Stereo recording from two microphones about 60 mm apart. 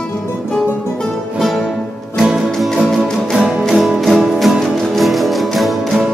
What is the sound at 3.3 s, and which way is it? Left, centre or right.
Music, centre.